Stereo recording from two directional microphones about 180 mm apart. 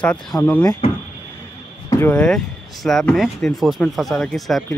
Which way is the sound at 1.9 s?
10° left (ahead or behind).